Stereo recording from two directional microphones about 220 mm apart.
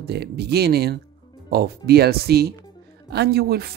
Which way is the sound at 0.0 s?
45° right (ahead or behind).